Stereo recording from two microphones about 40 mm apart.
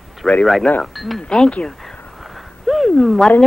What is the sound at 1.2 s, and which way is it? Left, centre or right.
Speech, left.